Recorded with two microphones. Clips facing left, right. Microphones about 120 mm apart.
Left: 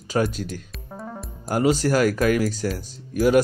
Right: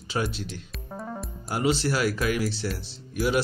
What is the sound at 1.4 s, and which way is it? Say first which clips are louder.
Speech: left 5 dB; 45° left (ahead or behind).